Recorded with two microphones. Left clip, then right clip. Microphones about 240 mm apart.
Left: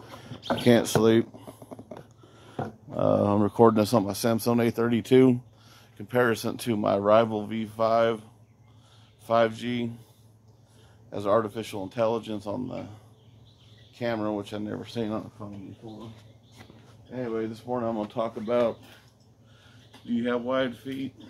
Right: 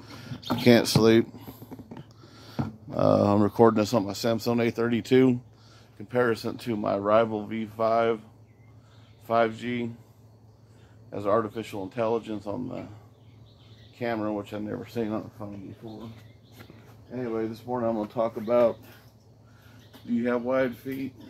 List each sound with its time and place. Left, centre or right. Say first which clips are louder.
0.2 s a sound: right 1 dB; centre
2.9 s a sound: right 2 dB; centre
3.5 s speech: left 1 dB; centre
3.8 s speech: left 1 dB; left
5.7 s speech: left 2 dB; left
9.2 s speech: left 1 dB; left
11.1 s speech: left 1 dB; left
13.9 s speech: even; left
17.3 s speech: even; centre
20.2 s speech: right 1 dB; centre